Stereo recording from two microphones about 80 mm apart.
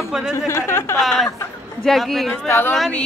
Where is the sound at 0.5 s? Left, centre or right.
Left.